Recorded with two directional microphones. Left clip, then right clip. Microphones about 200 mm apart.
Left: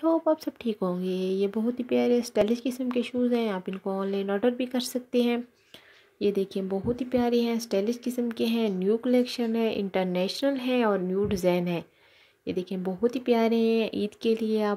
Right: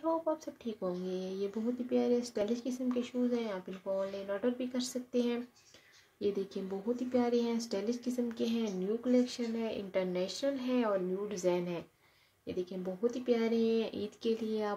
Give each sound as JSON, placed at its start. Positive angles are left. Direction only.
{"t": 0.0, "sound": "speech", "side_deg": 45}